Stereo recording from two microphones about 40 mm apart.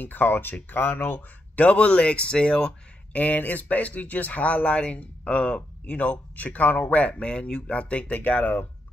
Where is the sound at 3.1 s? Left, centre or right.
Left.